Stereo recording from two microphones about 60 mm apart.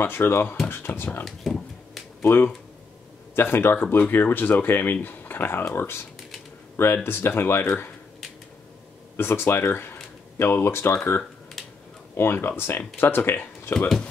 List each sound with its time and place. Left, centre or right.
0.0 s speech: left
1.2 s a sound: centre
2.2 s speech: left
9.1 s speech: left
12.2 s speech: left